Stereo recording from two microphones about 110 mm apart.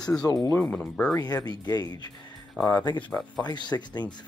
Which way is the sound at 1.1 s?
35° left (ahead or behind).